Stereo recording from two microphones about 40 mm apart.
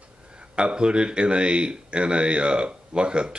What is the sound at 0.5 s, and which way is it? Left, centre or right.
Speech, right.